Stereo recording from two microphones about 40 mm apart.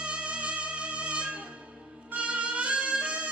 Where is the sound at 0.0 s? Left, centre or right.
Right.